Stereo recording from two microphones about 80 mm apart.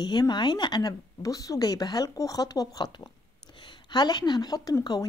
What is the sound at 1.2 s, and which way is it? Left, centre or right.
Speech, left.